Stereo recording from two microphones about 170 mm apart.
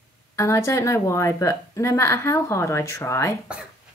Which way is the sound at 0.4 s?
15° left (ahead or behind).